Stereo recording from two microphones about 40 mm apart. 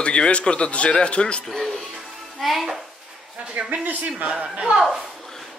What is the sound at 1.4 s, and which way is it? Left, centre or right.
Music, centre.